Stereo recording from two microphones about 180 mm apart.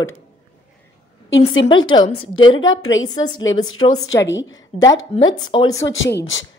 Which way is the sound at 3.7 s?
90° left.